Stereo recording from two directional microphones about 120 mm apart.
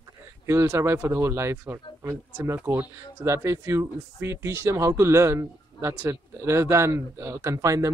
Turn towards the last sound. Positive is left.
turn(degrees=-25)  # may be behind; listen again after turning